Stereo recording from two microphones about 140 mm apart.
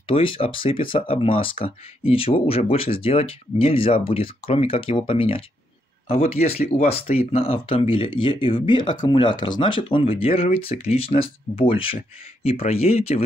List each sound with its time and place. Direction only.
0.1 s speech: 40° left (ahead or behind)